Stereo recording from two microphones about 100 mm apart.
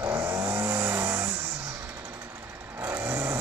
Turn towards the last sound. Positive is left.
turn(degrees=-25)  # may be behind; listen again after turning